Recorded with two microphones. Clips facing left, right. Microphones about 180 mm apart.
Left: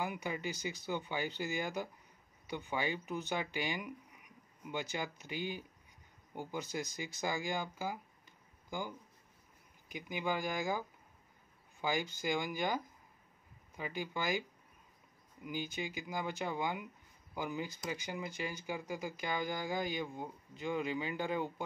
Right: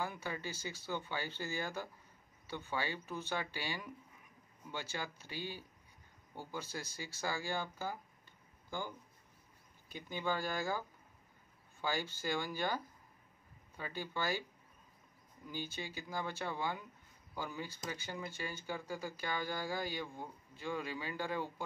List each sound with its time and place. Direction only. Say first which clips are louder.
0.0 s speech: left 3 dB; 15° left (ahead or behind)
15.4 s speech: left 4 dB; 15° left (ahead or behind)